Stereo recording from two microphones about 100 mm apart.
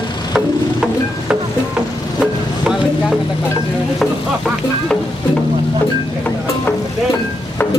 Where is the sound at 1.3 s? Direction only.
10° right (ahead or behind).